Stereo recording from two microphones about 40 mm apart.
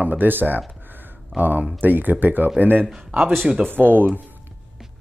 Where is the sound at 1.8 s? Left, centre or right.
Right.